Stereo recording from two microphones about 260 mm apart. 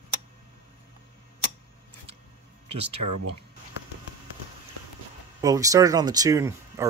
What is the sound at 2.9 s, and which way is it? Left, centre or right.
Speech, right.